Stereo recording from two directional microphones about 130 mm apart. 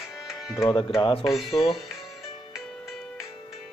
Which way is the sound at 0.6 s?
40° left (ahead or behind).